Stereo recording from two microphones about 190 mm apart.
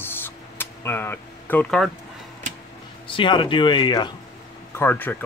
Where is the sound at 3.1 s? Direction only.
25° left (ahead or behind).